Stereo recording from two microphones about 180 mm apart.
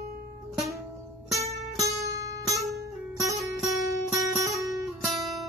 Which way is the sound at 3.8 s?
20° right (ahead or behind).